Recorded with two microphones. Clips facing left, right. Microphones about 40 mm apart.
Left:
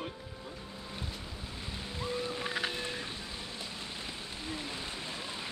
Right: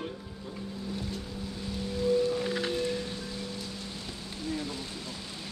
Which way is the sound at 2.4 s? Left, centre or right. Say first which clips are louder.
Right 4 dB; centre.